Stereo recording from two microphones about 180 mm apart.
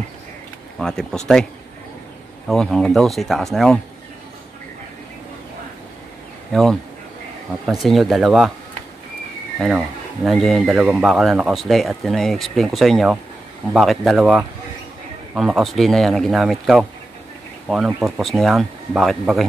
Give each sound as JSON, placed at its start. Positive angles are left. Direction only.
{"t": 0.7, "sound": "speech", "side_deg": 5}
{"t": 6.5, "sound": "speech", "side_deg": 0}
{"t": 7.8, "sound": "speech", "side_deg": 0}
{"t": 9.6, "sound": "speech", "side_deg": -5}